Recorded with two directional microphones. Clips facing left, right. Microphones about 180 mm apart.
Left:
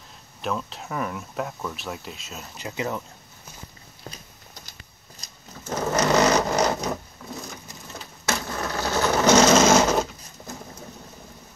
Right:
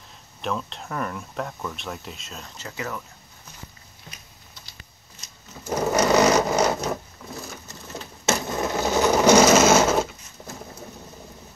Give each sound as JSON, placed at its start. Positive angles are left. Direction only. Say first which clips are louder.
{"t": 0.4, "sound": "speech", "louder": "even", "side_deg": 0}
{"t": 2.5, "sound": "speech", "louder": "left 4 dB", "side_deg": 20}
{"t": 4.1, "sound": "a sound", "louder": "left 2 dB", "side_deg": 40}
{"t": 5.6, "sound": "sewing machine", "louder": "right 2 dB", "side_deg": -10}
{"t": 8.3, "sound": "sewing machine", "louder": "right 4 dB", "side_deg": -20}